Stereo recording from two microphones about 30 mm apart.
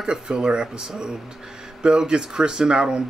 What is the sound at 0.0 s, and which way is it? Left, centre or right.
Speech, right.